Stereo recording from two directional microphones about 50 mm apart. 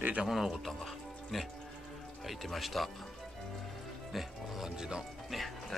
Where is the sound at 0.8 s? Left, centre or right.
Centre.